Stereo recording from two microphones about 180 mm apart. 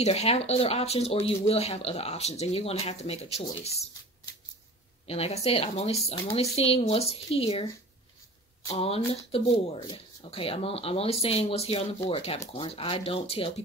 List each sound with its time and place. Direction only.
0.0 s speech: 35° left (ahead or behind)
5.0 s speech: 35° left (ahead or behind)
8.7 s speech: 35° left (ahead or behind)